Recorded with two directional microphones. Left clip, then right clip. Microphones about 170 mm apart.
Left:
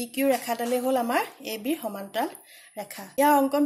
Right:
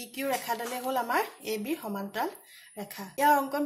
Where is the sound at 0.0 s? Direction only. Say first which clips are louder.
Left 7 dB; 35° left (ahead or behind).